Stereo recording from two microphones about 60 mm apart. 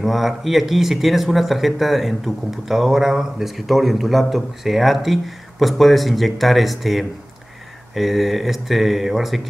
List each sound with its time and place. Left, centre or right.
0.0 s speech: centre